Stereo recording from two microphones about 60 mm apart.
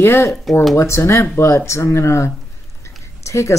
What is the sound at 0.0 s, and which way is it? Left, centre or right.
Speech, left.